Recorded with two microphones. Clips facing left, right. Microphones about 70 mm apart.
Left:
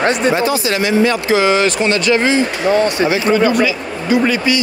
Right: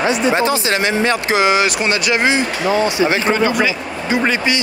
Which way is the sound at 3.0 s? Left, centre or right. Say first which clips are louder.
Left 2 dB; right.